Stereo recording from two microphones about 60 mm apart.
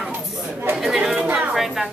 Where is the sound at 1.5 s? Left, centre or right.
Centre.